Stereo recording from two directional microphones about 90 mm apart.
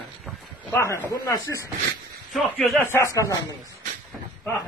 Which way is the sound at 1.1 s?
45° left (ahead or behind).